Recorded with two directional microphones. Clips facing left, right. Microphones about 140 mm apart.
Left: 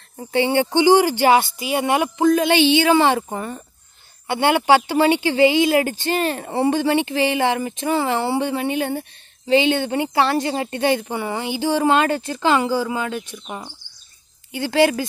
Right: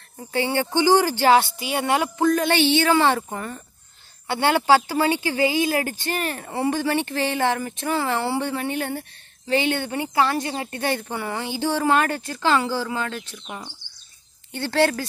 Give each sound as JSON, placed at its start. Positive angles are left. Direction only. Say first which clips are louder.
{"t": 0.3, "sound": "a woman's voice", "louder": "left 5 dB", "side_deg": 20}